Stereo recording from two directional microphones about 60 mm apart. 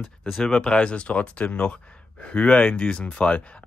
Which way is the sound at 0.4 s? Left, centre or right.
Centre.